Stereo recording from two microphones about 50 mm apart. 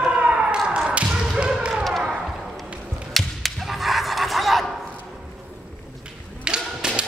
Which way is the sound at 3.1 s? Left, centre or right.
Centre.